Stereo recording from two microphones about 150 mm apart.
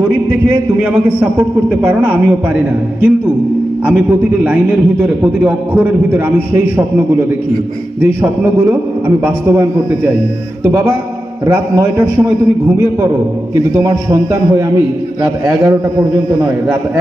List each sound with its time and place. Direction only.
1.8 s a man's voice: 10° right (ahead or behind)